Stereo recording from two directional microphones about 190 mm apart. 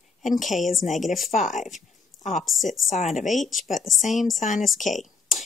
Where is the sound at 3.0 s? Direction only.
35° left (ahead or behind).